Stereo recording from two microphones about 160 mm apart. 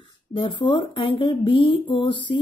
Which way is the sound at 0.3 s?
30° left (ahead or behind).